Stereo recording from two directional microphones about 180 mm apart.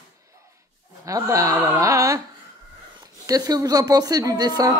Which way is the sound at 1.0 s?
15° right (ahead or behind).